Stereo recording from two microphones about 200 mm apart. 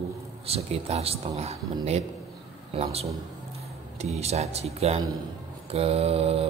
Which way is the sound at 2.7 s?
30° right (ahead or behind).